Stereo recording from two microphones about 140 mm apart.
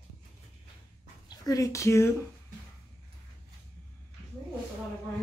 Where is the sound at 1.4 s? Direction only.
25° left (ahead or behind).